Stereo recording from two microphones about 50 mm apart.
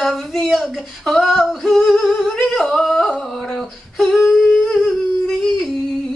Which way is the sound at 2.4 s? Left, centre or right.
Centre.